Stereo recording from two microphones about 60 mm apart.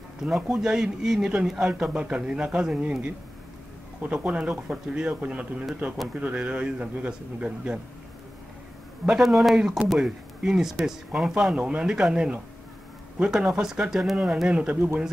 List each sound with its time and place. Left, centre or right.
0.2 s speech: centre
1.7 s a man's voice: centre
9.0 s a man's voice: centre
11.5 s speech: centre